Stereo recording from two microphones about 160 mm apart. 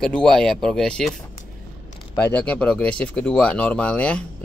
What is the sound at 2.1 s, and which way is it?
Speech, 15° left (ahead or behind).